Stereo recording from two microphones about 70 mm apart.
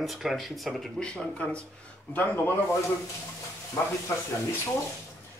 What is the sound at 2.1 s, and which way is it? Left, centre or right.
Speech, left.